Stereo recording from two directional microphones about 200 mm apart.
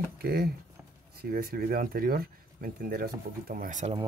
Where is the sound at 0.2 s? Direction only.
50° right (ahead or behind).